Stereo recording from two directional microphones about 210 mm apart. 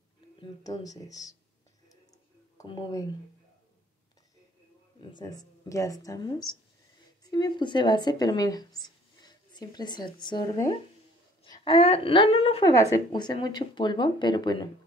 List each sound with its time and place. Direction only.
0.4 s speech: 15° left (ahead or behind)
2.5 s speech: 20° left (ahead or behind)
5.1 s speech: 15° left (ahead or behind)